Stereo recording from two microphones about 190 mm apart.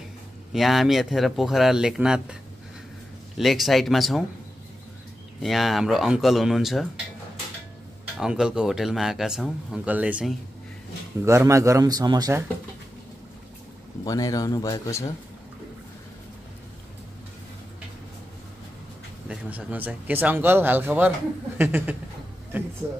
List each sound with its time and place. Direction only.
0.5 s a man's voice: centre (ahead or behind)
3.3 s a man's voice: centre (ahead or behind)
5.4 s a man's voice: centre (ahead or behind)
8.2 s a man's voice: 5° right (ahead or behind)
14.0 s speech: 20° left (ahead or behind)
19.2 s speech: 10° right (ahead or behind)